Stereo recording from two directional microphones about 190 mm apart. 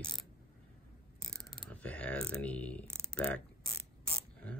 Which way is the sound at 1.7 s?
5° left (ahead or behind).